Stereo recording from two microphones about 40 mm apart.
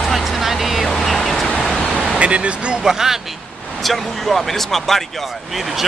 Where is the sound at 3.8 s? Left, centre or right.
Centre.